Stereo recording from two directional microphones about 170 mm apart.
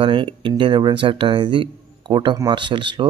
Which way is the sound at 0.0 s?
30° right (ahead or behind).